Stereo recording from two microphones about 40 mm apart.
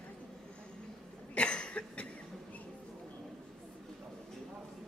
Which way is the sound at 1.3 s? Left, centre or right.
Left.